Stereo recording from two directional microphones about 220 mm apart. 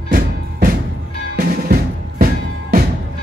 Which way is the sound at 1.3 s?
40° right (ahead or behind).